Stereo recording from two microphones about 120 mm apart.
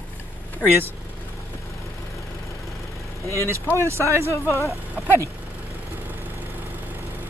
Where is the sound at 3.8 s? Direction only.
25° right (ahead or behind).